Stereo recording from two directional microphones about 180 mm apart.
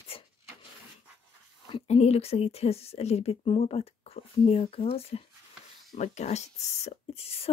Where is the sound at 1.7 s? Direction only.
35° left (ahead or behind).